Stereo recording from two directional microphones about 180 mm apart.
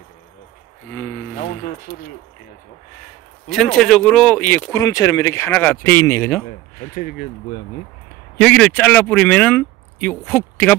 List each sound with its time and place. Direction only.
1.6 s speech: 60° left (ahead or behind)
3.4 s speech: centre (ahead or behind)
7.0 s speech: 45° left (ahead or behind)
8.4 s speech: 5° left (ahead or behind)